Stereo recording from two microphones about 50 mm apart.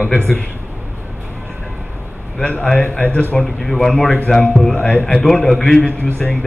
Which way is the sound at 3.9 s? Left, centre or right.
Centre.